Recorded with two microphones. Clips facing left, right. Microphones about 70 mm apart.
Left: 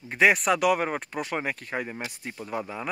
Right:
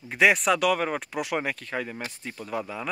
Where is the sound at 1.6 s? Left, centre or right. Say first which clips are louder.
Even; centre.